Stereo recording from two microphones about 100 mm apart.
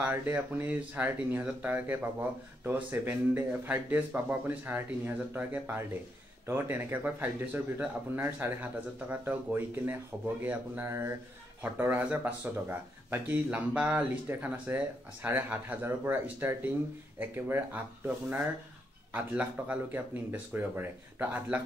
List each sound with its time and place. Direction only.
0.0 s speech: 20° right (ahead or behind)
10.9 s speech: 25° right (ahead or behind)